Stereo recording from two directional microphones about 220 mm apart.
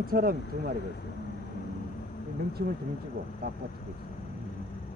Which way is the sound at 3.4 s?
45° right (ahead or behind).